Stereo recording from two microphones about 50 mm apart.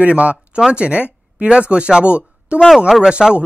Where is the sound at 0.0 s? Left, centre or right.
Right.